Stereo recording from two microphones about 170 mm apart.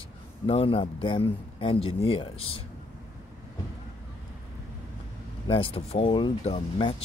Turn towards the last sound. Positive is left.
turn(degrees=30)  # may be behind; listen again after turning